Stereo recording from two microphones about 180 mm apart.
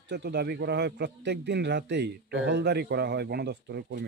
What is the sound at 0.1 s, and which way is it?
A man's voice, 65° right (ahead or behind).